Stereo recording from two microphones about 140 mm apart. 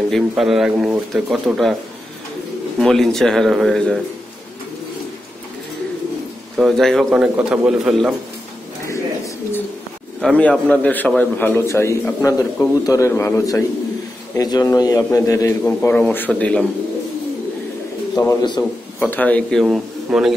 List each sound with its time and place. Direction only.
0.1 s speech: centre (ahead or behind)
2.8 s speech: 5° left (ahead or behind)
6.6 s speech: centre (ahead or behind)
7.1 s a man's voice: 10° right (ahead or behind)
8.8 s bird: 20° left (ahead or behind)
10.2 s a man's voice: 5° left (ahead or behind); by 15.5 s 25° left (ahead or behind)
15.6 s a man's voice: 10° left (ahead or behind)
18.2 s a man's voice: 25° left (ahead or behind)
18.9 s a man's voice: 10° left (ahead or behind)
19.6 s a man's voice: 5° right (ahead or behind)